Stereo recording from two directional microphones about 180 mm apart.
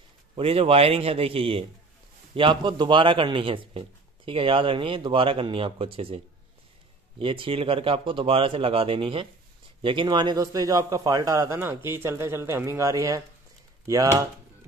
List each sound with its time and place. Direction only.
0.4 s speech: 30° right (ahead or behind)